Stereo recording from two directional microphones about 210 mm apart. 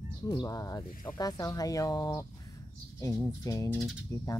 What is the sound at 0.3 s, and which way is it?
Speech, 20° left (ahead or behind).